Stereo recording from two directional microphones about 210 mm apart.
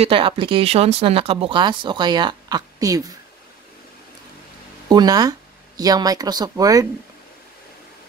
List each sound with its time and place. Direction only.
0.0 s speech: 25° right (ahead or behind)
4.8 s speech: 20° right (ahead or behind)